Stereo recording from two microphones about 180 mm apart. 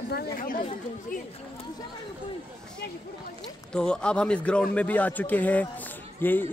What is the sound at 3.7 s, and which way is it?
A man's voice, 5° left (ahead or behind).